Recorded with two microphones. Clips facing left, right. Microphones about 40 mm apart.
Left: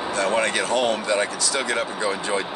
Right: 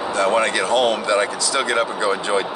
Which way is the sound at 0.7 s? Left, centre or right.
Right.